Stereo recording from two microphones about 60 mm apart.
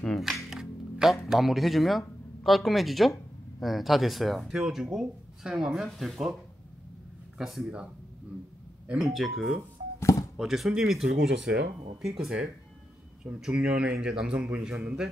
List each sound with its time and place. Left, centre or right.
0.2 s speech: centre
7.3 s speech: centre
9.0 s speech: centre
9.9 s music: left
10.3 s speech: centre